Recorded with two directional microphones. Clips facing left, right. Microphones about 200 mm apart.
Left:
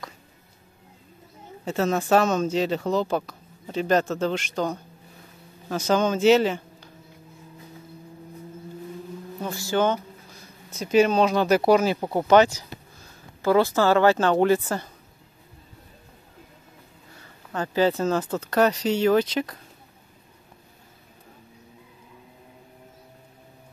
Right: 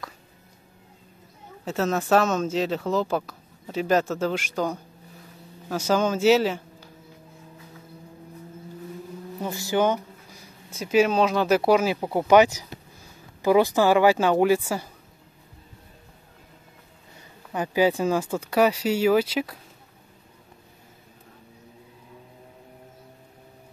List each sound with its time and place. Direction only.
1.6 s a woman's voice: centre (ahead or behind)
9.4 s speech: 15° right (ahead or behind)
17.5 s speech: 10° right (ahead or behind)